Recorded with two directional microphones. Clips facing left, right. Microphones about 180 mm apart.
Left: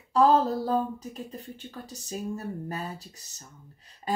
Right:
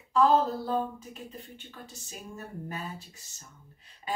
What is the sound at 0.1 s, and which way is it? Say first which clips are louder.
Speech: left 2 dB; 40° left (ahead or behind).